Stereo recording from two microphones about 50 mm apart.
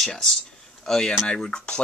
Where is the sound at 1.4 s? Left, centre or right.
Left.